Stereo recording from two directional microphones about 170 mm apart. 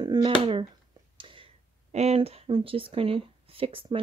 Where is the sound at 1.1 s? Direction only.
30° right (ahead or behind).